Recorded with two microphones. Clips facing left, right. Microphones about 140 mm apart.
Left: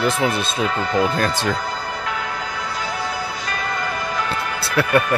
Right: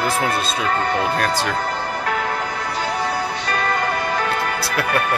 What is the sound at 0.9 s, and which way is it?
Speech, 30° left (ahead or behind).